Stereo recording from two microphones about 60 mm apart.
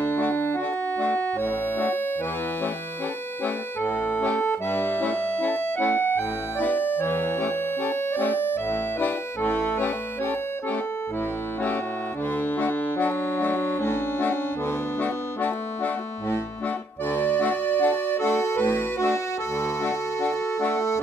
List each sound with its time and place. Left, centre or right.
0.0 s music: left
4.1 s accordion: left
12.5 s accordion: left
17.1 s accordion: left
19.8 s music: left